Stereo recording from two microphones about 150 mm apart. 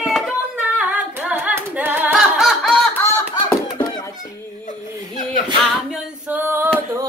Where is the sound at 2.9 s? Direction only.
15° left (ahead or behind).